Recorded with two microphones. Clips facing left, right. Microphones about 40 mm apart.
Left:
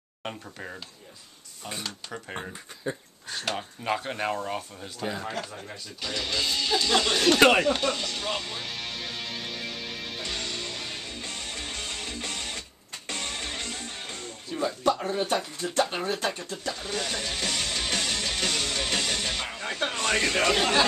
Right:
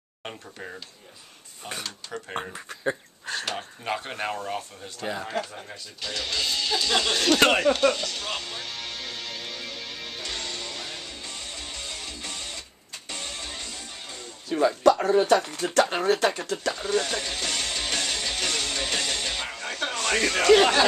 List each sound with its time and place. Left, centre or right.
0.2 s speech: centre
1.8 s a man's voice: centre
2.5 s speech: right
3.5 s speech: centre
8.0 s music: centre
13.1 s music: left
14.5 s speech: right
15.2 s speech: right
16.8 s music: centre
19.5 s a sound: centre
20.1 s a man's voice: centre